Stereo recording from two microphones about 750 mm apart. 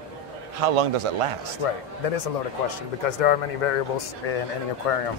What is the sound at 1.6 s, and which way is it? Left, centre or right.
Speech, left.